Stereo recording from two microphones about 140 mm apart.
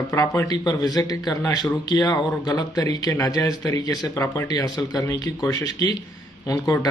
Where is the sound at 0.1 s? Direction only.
20° left (ahead or behind).